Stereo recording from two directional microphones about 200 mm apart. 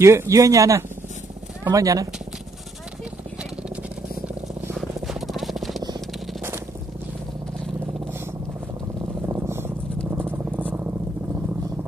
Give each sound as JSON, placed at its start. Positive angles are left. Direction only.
{"t": 0.0, "sound": "speech", "side_deg": -15}
{"t": 4.7, "sound": "a sound", "side_deg": 0}
{"t": 9.3, "sound": "purr", "side_deg": -15}
{"t": 10.1, "sound": "rodents", "side_deg": -10}